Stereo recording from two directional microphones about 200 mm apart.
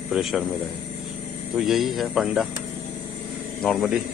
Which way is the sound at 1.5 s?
Centre (ahead or behind).